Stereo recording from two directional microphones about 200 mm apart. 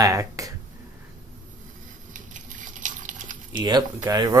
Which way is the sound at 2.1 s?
40° right (ahead or behind).